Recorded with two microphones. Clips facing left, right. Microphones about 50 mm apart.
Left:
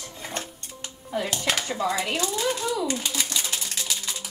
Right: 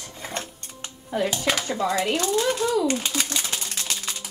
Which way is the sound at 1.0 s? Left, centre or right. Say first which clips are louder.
Right 4 dB; centre.